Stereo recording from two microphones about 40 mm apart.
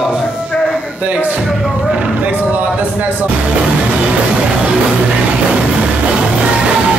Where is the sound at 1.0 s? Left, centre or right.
Right.